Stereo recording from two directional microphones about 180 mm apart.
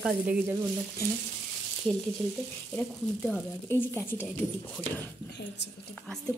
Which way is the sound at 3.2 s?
10° left (ahead or behind).